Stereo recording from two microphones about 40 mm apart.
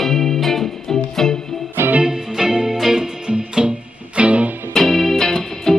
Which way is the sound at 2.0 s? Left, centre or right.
Centre.